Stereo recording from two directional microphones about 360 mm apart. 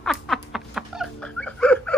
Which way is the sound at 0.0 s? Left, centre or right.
Centre.